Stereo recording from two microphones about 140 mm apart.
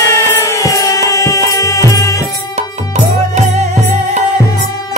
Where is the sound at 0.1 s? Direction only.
20° left (ahead or behind).